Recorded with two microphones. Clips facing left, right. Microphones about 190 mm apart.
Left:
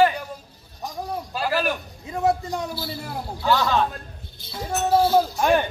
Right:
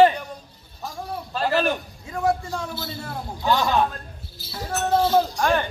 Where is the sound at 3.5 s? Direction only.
15° right (ahead or behind).